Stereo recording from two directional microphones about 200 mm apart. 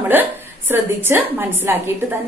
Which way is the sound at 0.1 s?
10° right (ahead or behind).